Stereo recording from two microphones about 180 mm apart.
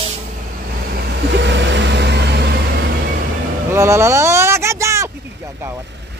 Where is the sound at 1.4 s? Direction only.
80° right; by 2.5 s 65° right (ahead or behind).